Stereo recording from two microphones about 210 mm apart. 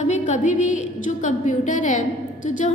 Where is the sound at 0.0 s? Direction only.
35° left (ahead or behind).